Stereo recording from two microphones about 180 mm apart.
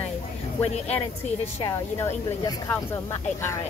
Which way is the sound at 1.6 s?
15° left (ahead or behind).